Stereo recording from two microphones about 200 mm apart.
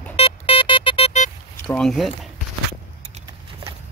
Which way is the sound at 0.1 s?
25° left (ahead or behind).